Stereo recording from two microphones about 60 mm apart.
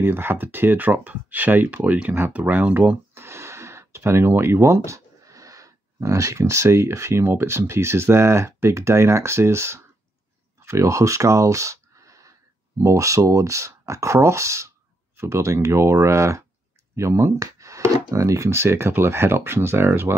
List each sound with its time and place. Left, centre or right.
0.0 s speech: right
3.2 s a sound: right
4.9 s speech: right
17.4 s speech: right